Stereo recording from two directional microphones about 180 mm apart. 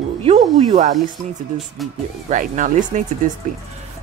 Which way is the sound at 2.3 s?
45° right (ahead or behind).